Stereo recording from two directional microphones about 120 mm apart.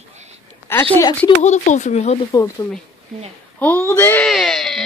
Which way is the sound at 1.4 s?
75° left (ahead or behind).